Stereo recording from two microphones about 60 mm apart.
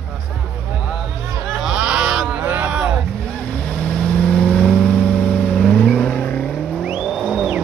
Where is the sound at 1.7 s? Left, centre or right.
Centre.